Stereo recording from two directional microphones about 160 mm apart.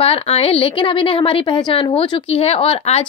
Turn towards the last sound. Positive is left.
turn(degrees=40)  # may be behind; listen again after turning